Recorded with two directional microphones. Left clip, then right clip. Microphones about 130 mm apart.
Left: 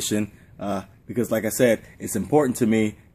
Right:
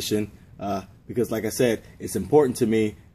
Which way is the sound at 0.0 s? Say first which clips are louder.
Even; 35° left (ahead or behind).